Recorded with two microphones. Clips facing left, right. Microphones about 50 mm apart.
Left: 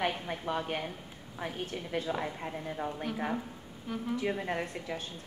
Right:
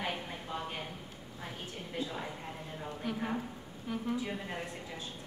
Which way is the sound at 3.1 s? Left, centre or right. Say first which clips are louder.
Left 2 dB; centre.